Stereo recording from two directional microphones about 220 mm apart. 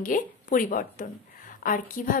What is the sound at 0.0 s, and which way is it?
Speech, 40° left (ahead or behind).